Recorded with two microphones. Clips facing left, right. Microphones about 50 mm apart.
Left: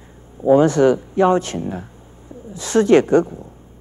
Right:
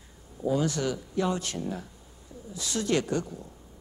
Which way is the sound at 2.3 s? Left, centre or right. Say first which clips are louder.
Left 13 dB; left.